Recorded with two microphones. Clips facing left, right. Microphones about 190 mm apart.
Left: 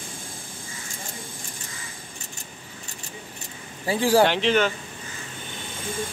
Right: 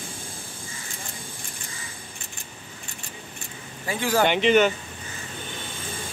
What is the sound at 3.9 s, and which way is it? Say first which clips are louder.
Speech: left 4 dB; 35° left (ahead or behind).